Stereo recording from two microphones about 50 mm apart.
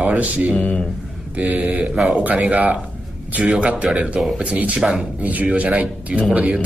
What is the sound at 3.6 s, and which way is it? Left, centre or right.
Speech, right.